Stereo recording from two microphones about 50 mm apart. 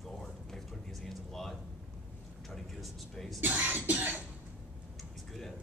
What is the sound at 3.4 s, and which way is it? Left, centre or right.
Cough, right.